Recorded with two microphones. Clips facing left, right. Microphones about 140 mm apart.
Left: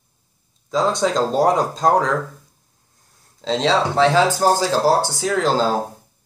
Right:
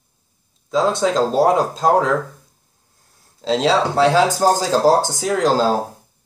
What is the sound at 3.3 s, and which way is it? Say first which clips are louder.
Speech: right 2 dB; 5° right (ahead or behind).